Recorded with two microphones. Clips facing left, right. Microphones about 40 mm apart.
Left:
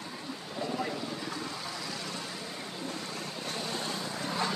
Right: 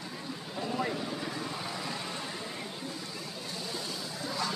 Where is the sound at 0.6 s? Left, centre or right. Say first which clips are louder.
Right 1 dB; centre.